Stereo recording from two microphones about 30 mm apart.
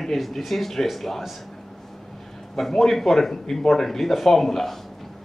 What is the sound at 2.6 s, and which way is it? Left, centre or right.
Speech, centre.